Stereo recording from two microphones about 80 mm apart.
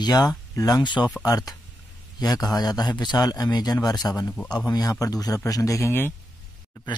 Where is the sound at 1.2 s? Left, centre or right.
Left.